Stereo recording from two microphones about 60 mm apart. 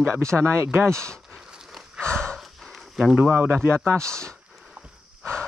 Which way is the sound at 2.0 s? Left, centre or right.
Centre.